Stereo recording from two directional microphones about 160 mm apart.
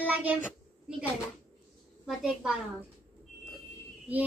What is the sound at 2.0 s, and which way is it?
Speech, centre (ahead or behind).